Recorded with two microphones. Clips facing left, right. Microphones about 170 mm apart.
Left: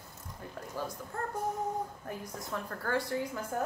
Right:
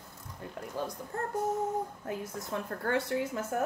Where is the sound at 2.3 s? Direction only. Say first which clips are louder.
Right 3 dB; 25° right (ahead or behind).